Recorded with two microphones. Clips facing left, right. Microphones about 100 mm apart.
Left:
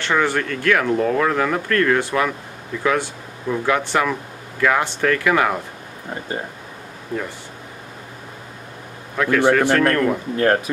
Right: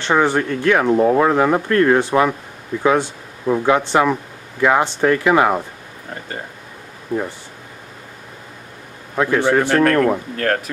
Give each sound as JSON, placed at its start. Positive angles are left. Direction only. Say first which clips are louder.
{"t": 0.0, "sound": "speech", "louder": "right 3 dB", "side_deg": -25}
{"t": 9.1, "sound": "a man's voice", "louder": "even", "side_deg": -25}
{"t": 10.3, "sound": "speech", "louder": "left 3 dB", "side_deg": 15}